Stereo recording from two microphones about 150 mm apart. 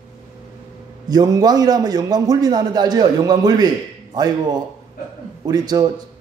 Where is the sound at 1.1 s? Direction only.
25° right (ahead or behind).